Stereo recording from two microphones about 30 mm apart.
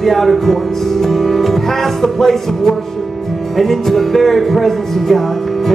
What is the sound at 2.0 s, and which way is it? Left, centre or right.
Music, centre.